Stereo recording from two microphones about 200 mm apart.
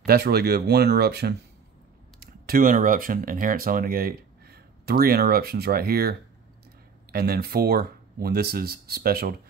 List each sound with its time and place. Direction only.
0.0 s speech: 50° right (ahead or behind)